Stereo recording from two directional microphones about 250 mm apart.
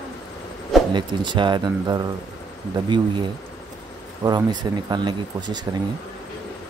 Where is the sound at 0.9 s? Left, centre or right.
Centre.